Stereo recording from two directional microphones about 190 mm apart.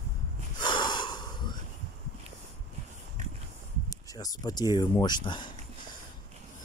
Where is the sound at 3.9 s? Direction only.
20° left (ahead or behind).